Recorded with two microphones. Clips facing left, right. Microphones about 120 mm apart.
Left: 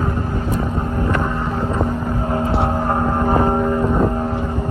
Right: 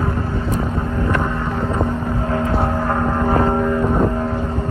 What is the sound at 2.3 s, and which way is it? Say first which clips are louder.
Vehicle: even; 30° left (ahead or behind).